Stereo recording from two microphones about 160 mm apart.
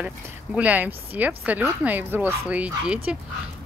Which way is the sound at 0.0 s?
5° right (ahead or behind).